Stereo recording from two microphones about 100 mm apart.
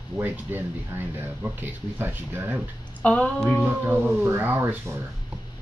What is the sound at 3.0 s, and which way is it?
Speech, 10° left (ahead or behind).